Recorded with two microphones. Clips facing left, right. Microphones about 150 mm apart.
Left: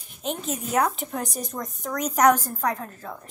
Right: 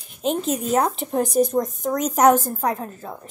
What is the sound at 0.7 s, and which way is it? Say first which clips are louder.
A woman's voice: right 1 dB; 30° right (ahead or behind).